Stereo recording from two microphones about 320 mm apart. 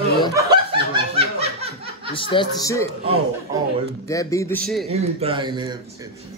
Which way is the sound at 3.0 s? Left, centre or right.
Centre.